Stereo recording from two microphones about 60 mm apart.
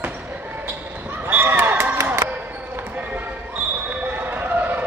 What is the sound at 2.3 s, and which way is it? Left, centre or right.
Basketball bounce, right.